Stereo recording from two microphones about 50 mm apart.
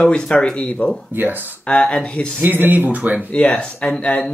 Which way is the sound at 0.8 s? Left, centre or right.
Left.